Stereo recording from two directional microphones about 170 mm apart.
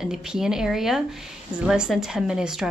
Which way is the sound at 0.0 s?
5° right (ahead or behind).